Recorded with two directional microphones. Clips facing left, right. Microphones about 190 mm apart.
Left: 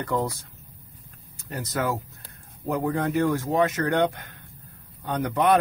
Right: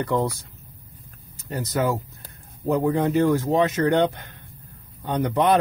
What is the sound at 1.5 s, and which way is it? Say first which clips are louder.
Speech: right 4 dB; 30° right (ahead or behind).